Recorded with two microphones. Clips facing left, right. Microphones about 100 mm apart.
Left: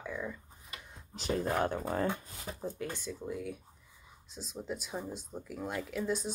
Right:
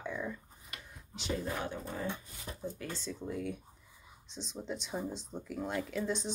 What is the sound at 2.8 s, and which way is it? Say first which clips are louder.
Speech: left 3 dB; 15° left (ahead or behind).